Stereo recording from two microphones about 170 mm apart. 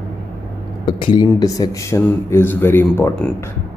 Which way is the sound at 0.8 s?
30° left (ahead or behind).